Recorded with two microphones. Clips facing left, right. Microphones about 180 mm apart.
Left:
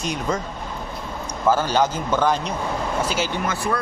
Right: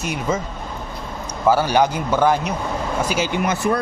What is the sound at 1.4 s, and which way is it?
A man's voice, 10° right (ahead or behind).